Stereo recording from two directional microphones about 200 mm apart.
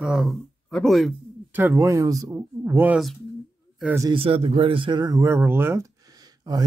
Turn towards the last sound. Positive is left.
turn(degrees=-20)  # may be behind; listen again after turning